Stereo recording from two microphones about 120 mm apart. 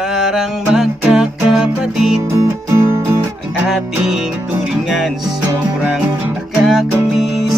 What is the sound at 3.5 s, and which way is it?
Music, 5° right (ahead or behind).